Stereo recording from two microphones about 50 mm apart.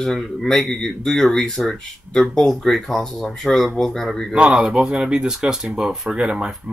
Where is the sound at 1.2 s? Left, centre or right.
Centre.